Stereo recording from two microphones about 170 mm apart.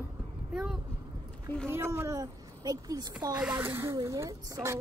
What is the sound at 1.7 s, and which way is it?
A woman's voice, 15° right (ahead or behind).